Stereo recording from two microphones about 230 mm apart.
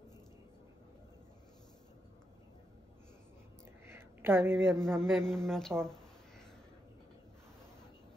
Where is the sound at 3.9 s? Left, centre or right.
Centre.